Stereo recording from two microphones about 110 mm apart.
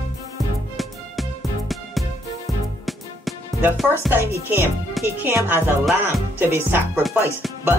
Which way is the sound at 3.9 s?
20° right (ahead or behind).